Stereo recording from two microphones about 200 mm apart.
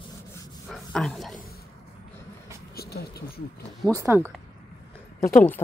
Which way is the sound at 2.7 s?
50° left (ahead or behind).